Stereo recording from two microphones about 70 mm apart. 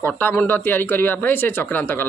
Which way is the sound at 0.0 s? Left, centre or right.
Left.